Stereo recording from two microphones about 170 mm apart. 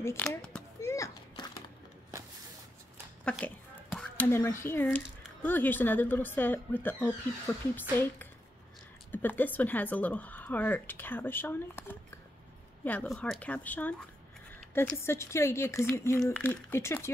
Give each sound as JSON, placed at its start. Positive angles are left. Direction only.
{"t": 0.0, "sound": "speech", "side_deg": 15}
{"t": 0.7, "sound": "a sound", "side_deg": 20}
{"t": 3.3, "sound": "speech", "side_deg": 5}
{"t": 9.1, "sound": "speech", "side_deg": 10}